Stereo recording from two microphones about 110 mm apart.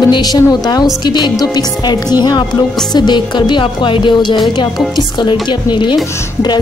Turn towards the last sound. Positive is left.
turn(degrees=45)  # may be behind; listen again after turning